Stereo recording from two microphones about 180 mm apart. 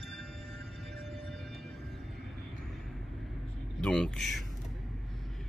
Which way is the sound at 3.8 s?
5° left (ahead or behind).